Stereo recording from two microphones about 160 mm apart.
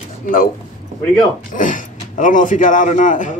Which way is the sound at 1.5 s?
55° left (ahead or behind).